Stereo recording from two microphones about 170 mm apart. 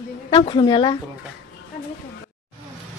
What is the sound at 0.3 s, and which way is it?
Speech, 30° left (ahead or behind).